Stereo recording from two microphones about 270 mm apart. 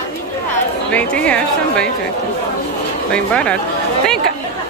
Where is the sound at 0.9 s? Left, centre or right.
Centre.